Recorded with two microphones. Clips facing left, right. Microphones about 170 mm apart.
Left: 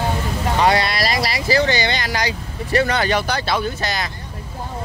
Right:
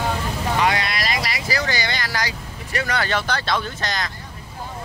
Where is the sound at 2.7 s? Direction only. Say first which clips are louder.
Left 7 dB; 35° left (ahead or behind).